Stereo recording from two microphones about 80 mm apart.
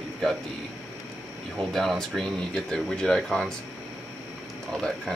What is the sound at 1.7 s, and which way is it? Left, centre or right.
Speech, centre.